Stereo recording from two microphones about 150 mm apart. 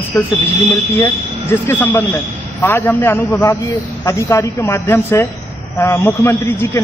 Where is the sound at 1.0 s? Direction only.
15° left (ahead or behind).